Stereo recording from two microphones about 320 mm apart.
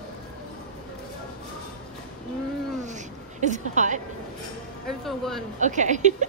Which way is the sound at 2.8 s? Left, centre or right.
Right.